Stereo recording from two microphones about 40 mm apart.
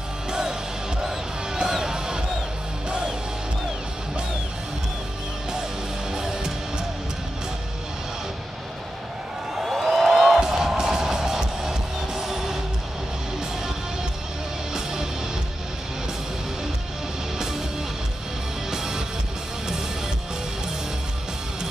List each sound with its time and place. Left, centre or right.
0.3 s music: centre
6.1 s music: centre
9.6 s a sound: centre
10.5 s music: centre
18.7 s music: centre